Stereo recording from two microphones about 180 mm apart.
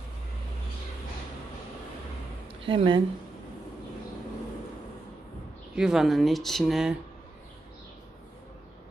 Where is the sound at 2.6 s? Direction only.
30° right (ahead or behind).